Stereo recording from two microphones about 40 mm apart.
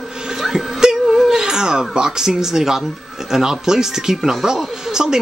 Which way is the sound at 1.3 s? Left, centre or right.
Centre.